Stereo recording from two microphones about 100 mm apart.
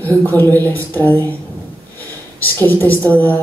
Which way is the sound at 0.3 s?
20° left (ahead or behind).